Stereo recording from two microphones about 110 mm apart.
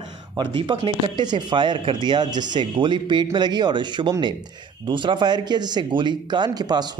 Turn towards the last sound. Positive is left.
turn(degrees=-40)  # may be behind; listen again after turning